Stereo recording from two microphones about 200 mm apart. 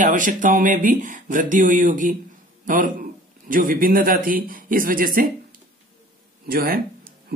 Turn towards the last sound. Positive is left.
turn(degrees=-45)  # may be behind; listen again after turning